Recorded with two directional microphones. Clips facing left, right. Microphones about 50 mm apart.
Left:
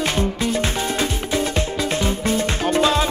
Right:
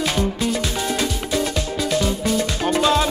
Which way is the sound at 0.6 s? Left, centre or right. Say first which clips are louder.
Left 1 dB; left.